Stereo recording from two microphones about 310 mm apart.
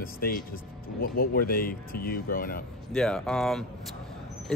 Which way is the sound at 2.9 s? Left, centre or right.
Centre.